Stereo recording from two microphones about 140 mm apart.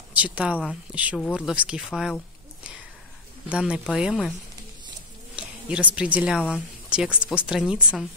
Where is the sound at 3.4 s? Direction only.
5° right (ahead or behind).